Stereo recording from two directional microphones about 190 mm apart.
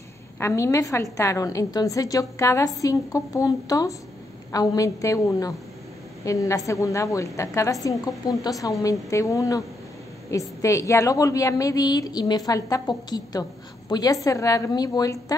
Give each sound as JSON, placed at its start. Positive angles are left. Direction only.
{"t": 0.4, "sound": "a woman's voice", "side_deg": 15}